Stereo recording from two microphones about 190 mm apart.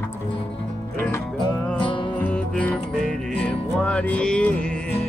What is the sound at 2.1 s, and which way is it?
Music, 5° left (ahead or behind).